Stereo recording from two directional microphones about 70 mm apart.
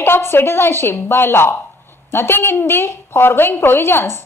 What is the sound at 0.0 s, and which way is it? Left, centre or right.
A woman's voice, left.